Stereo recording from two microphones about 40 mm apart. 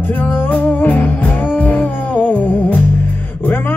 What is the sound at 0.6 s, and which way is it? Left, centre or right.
Music, left.